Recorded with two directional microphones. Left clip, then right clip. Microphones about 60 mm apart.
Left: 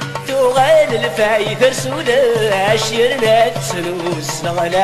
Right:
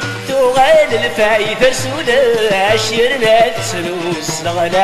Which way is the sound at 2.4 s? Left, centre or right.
Centre.